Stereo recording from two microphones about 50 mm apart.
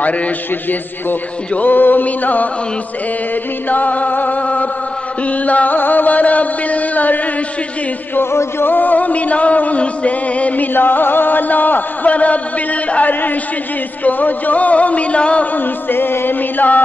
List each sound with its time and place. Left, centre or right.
1.5 s music: left
3.6 s music: left
8.2 s chant: left
8.6 s music: left
15.5 s music: left